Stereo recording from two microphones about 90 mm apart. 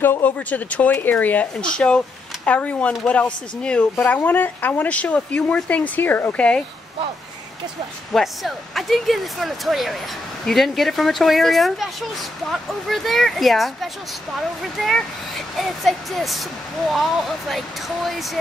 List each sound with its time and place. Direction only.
0.0 s speech: 20° left (ahead or behind)
4.0 s speech: 20° left (ahead or behind)
8.1 s speech: centre (ahead or behind)